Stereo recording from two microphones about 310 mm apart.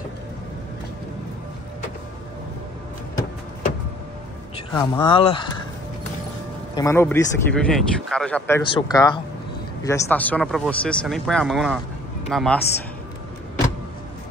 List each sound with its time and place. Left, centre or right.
4.7 s speech: centre
6.7 s speech: centre